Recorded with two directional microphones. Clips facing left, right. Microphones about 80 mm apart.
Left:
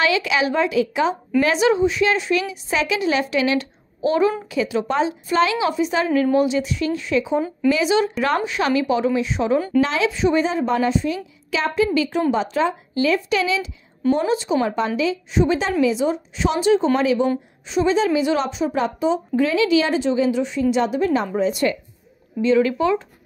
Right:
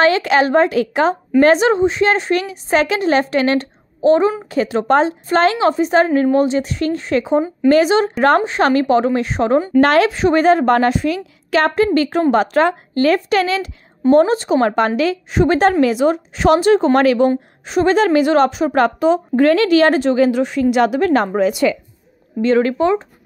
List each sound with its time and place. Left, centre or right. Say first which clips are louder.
0.0 s a woman's voice: right 6 dB; right
4.0 s a woman's voice: right 6 dB; right
4.5 s a woman's voice: right 6 dB; right
17.6 s a woman's voice: right 4 dB; right
21.4 s a woman's voice: right 5 dB; right
22.4 s a woman's voice: right 3 dB; right